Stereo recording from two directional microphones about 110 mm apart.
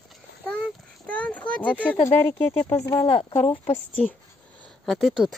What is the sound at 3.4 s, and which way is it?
Speech, 70° left (ahead or behind).